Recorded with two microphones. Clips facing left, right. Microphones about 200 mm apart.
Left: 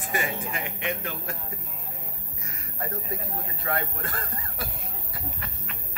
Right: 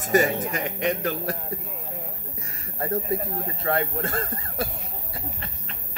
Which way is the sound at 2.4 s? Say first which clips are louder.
Right 3 dB; 30° right (ahead or behind).